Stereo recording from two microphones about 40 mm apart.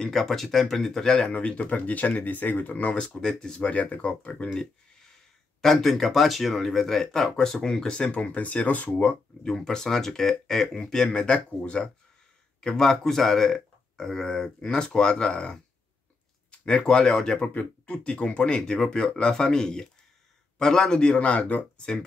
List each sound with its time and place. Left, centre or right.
0.0 s speech: centre
1.3 s speech: left
3.3 s speech: left
3.6 s speech: left
5.6 s speech: centre; by 9.1 s left
9.4 s speech: centre
11.1 s speech: left
12.5 s speech: centre; by 21.8 s left